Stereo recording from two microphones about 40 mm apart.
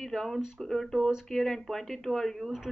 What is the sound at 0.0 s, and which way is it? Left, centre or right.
Speech, centre.